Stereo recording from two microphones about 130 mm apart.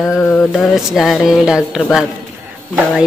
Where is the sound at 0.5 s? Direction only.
5° right (ahead or behind).